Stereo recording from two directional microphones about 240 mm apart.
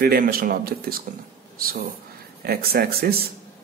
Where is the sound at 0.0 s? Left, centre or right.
Right.